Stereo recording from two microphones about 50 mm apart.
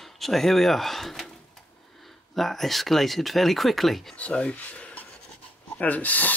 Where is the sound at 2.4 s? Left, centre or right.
Centre.